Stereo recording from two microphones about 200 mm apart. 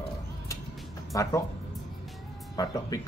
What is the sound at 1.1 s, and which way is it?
Speech, 15° left (ahead or behind).